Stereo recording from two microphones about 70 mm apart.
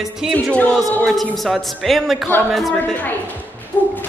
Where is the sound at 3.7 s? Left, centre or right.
Left.